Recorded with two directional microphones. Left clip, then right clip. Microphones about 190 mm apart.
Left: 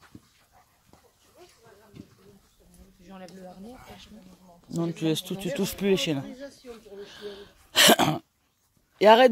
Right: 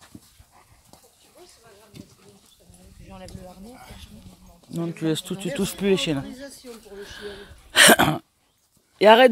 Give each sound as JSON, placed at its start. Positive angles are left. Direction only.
{"t": 2.0, "sound": "bird", "side_deg": -40}
{"t": 4.6, "sound": "speech", "side_deg": 10}
{"t": 6.3, "sound": "speech", "side_deg": -50}
{"t": 7.0, "sound": "speech", "side_deg": -10}